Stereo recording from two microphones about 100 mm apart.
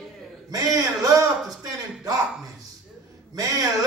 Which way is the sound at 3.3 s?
35° right (ahead or behind).